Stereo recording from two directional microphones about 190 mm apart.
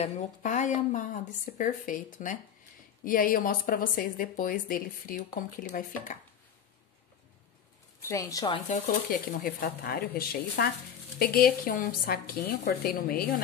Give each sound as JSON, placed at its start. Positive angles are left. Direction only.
{"t": 0.0, "sound": "speech", "side_deg": 40}
{"t": 8.1, "sound": "speech", "side_deg": 15}
{"t": 9.3, "sound": "speech", "side_deg": 50}